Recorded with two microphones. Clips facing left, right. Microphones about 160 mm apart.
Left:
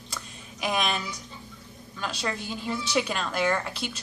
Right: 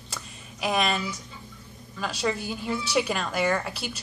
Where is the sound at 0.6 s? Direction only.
5° right (ahead or behind).